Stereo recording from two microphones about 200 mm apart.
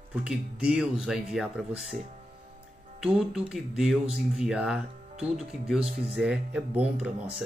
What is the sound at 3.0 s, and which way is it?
Speech, centre (ahead or behind).